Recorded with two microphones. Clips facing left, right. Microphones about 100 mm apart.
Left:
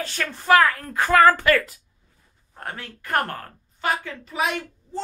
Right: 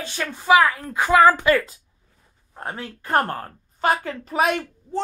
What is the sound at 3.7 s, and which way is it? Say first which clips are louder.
Speech: right 4 dB; 40° right (ahead or behind).